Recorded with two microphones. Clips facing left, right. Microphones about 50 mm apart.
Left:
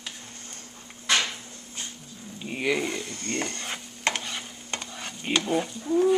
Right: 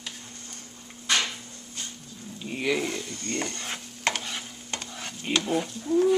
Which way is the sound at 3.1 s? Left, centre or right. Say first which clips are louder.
Left 1 dB; left.